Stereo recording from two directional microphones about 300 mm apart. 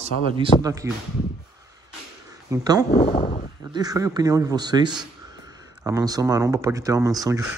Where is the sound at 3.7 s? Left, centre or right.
Centre.